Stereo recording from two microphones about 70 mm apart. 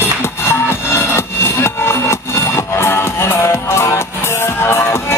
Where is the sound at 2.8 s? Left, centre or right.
Left.